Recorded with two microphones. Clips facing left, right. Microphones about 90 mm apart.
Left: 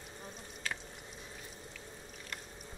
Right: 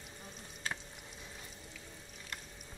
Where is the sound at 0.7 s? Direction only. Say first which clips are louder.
Even; 30° right (ahead or behind).